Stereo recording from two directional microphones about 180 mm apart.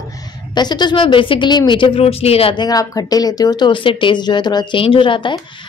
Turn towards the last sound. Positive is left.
turn(degrees=25)  # may be behind; listen again after turning